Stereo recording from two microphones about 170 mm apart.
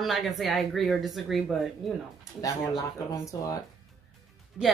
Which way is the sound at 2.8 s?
20° left (ahead or behind).